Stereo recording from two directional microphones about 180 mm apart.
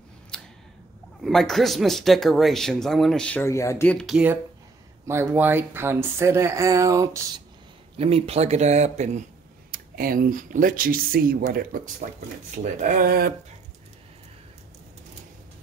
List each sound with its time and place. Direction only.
0.3 s a sound: 5° left (ahead or behind)
1.2 s speech: centre (ahead or behind); by 7.4 s 20° right (ahead or behind)
8.0 s speech: 35° right (ahead or behind)
9.7 s speech: 55° right (ahead or behind)